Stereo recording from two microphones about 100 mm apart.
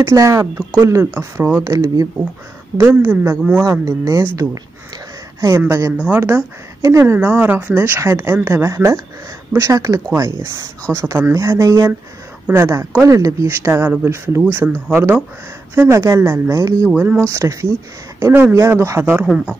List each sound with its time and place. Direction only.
0.0 s speech: 30° right (ahead or behind)
1.6 s speech: 35° right (ahead or behind)
2.8 s speech: 20° right (ahead or behind)
3.8 s speech: 35° right (ahead or behind)
5.7 s speech: 30° right (ahead or behind)
7.2 s speech: 15° right (ahead or behind); by 13.5 s 35° right (ahead or behind)
13.5 s a woman's voice: 25° right (ahead or behind)
16.9 s speech: 10° right (ahead or behind)
17.3 s speech: 30° right (ahead or behind)
19.2 s speech: centre (ahead or behind)